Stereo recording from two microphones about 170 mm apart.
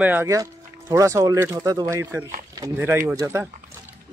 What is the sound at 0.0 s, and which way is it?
Speech, 10° right (ahead or behind).